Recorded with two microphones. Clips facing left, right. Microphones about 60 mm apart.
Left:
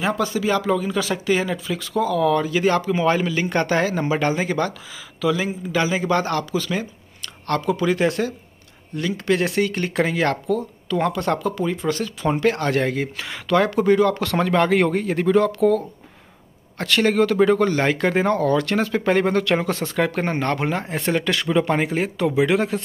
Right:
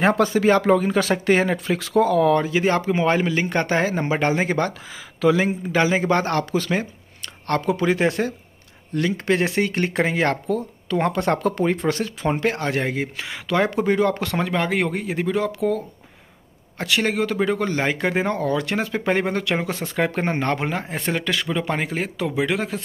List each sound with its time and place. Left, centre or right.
0.4 s speech: right
11.3 s speech: right
11.9 s speech: right
14.3 s speech: centre
20.5 s speech: centre